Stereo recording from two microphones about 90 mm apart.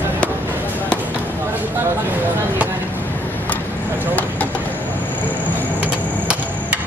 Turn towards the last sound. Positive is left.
turn(degrees=-15)  # may be behind; listen again after turning